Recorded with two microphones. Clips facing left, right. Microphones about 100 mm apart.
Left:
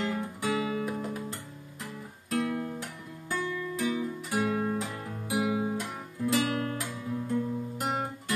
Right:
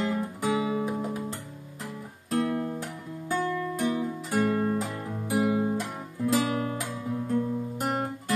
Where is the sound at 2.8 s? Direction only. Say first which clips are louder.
Right 5 dB; 35° right (ahead or behind).